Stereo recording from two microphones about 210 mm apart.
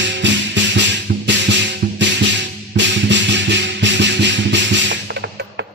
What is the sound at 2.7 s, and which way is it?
Music, 60° right (ahead or behind).